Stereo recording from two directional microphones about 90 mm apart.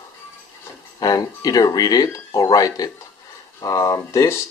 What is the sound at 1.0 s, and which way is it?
Speech, 45° left (ahead or behind).